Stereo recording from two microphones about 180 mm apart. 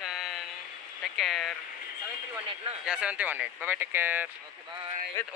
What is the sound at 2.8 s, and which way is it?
Speech, 5° right (ahead or behind).